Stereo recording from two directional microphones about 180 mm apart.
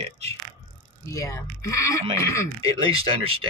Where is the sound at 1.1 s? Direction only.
20° left (ahead or behind).